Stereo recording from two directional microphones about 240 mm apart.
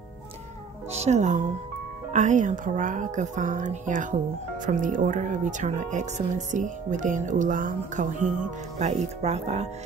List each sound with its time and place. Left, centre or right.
0.9 s speech: right